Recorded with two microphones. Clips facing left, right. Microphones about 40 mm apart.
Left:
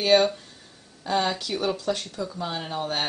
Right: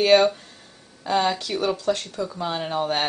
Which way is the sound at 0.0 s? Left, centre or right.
Centre.